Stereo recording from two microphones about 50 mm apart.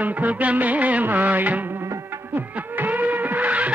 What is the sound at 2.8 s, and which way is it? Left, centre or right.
Music, right.